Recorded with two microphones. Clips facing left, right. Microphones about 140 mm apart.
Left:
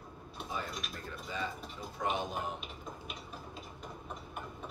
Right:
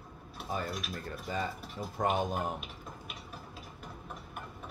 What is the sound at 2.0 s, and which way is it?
Speech, 50° right (ahead or behind).